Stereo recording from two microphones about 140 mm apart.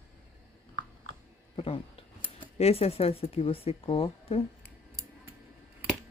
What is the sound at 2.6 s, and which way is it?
Speech, 45° left (ahead or behind).